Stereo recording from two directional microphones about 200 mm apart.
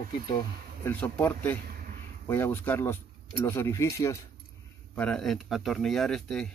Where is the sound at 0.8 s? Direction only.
10° left (ahead or behind).